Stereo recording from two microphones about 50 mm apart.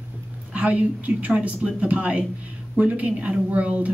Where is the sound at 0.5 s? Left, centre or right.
Right.